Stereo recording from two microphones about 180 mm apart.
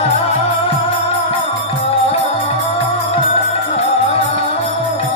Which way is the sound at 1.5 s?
35° left (ahead or behind).